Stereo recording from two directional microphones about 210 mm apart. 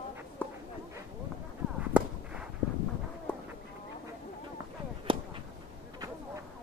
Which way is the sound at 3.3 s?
5° left (ahead or behind).